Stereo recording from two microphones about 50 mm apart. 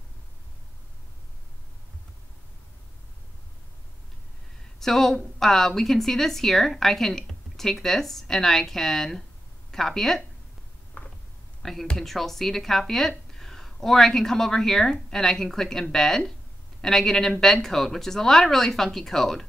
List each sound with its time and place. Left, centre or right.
4.7 s a woman's voice: centre
11.0 s a sound: left
11.6 s a woman's voice: centre